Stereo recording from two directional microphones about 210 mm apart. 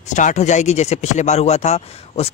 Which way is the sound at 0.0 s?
35° left (ahead or behind).